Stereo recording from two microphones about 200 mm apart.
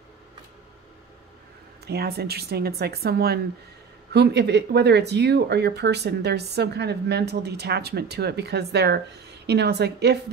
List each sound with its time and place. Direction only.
1.9 s speech: 50° right (ahead or behind)